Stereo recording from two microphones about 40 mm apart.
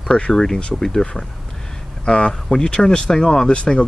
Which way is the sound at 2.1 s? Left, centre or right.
Left.